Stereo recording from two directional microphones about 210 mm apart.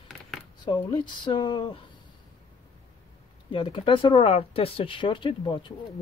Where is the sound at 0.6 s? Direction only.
20° left (ahead or behind).